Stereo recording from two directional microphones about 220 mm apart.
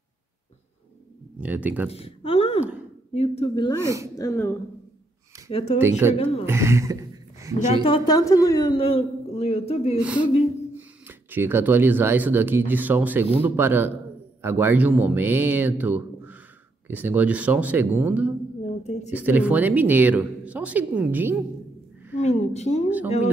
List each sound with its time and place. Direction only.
1.4 s speech: 5° right (ahead or behind)
1.9 s a sound: 25° left (ahead or behind)
3.2 s a woman's voice: 25° left (ahead or behind)
3.8 s speech: 15° right (ahead or behind)
4.2 s speech: 10° left (ahead or behind)
5.5 s a woman's voice: 25° left (ahead or behind)
5.8 s speech: 10° right (ahead or behind)
7.6 s a woman's voice: 25° left (ahead or behind)
9.9 s a woman's voice: 5° right (ahead or behind)
22.2 s a woman's voice: 30° left (ahead or behind)